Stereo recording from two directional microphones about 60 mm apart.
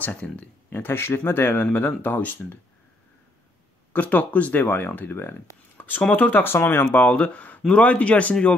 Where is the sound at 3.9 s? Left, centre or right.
Left.